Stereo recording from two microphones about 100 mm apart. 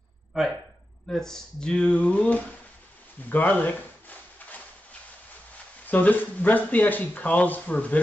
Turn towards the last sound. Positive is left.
turn(degrees=15)  # may be behind; listen again after turning